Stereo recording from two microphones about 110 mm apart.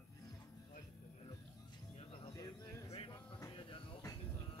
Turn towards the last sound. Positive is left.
turn(degrees=60)  # may be behind; listen again after turning